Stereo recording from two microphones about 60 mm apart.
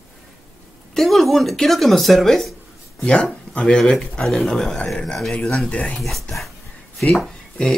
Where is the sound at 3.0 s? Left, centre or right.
Centre.